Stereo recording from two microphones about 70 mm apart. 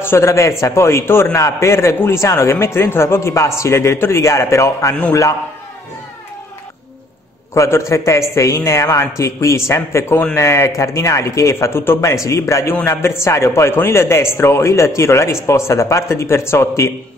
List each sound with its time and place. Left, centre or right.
0.0 s a man's voice: left
7.5 s a man's voice: left